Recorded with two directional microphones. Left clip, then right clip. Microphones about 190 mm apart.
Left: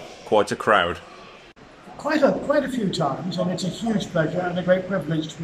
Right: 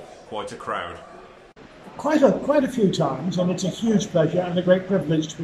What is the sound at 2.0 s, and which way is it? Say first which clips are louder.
Speech: right 2 dB; 15° right (ahead or behind).